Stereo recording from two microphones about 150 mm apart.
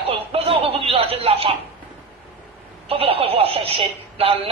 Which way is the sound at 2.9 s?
40° right (ahead or behind).